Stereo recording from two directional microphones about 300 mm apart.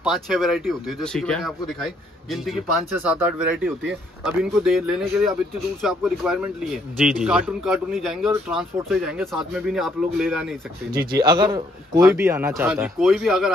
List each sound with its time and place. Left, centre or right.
0.0 s speech: centre
10.9 s speech: right
11.1 s a man's voice: centre